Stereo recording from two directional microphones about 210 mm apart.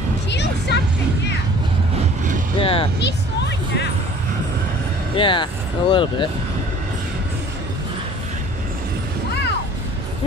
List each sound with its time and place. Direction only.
0.3 s music: 55° left (ahead or behind)
2.6 s vehicle: 25° left (ahead or behind)
3.0 s music: 55° left (ahead or behind)
5.1 s speech: 25° left (ahead or behind)